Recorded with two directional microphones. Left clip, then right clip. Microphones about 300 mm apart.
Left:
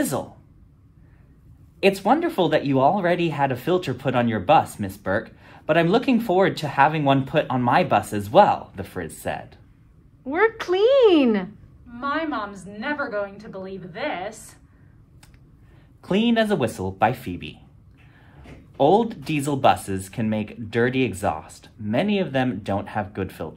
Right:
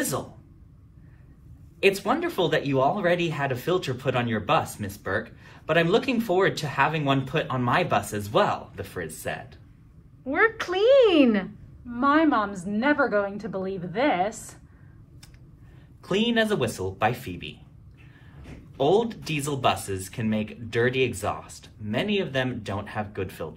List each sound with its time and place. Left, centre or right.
1.8 s speech: left
10.2 s speech: centre
11.9 s a woman's voice: centre
16.0 s speech: left
18.8 s speech: left